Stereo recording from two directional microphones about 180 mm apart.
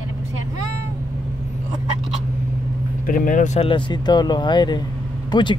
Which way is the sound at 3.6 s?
25° left (ahead or behind).